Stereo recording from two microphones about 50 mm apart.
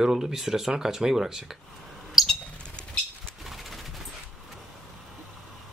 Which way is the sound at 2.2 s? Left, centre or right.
Centre.